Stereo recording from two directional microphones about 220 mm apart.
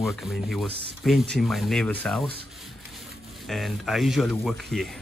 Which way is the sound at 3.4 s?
Centre (ahead or behind).